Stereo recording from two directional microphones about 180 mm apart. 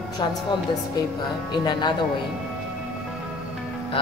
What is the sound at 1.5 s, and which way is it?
Speech, 25° left (ahead or behind).